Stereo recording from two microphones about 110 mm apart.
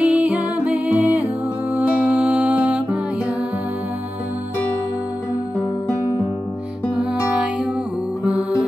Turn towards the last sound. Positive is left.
turn(degrees=-10)  # may be behind; listen again after turning